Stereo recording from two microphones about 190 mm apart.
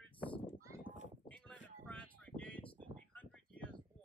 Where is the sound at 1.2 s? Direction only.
5° left (ahead or behind).